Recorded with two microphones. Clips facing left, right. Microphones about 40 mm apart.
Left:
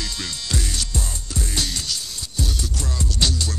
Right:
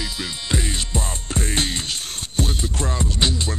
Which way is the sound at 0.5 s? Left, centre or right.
Right.